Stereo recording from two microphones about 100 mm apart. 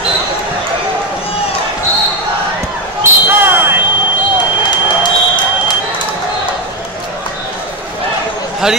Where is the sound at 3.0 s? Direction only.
20° right (ahead or behind).